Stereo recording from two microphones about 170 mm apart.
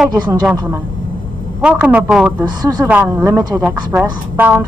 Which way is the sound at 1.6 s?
5° right (ahead or behind).